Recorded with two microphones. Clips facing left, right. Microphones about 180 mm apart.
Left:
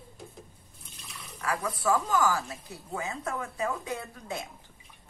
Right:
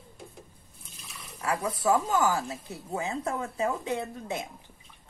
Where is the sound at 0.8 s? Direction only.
Centre (ahead or behind).